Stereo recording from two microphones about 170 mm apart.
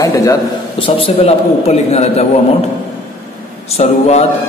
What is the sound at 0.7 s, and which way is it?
A man's voice, 30° left (ahead or behind).